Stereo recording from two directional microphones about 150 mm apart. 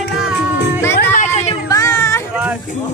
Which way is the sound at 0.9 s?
55° left (ahead or behind).